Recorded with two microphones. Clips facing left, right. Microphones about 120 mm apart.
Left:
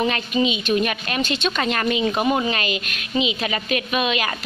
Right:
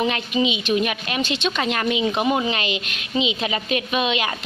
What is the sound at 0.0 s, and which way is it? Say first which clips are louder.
A woman's voice: left 1 dB; 15° right (ahead or behind).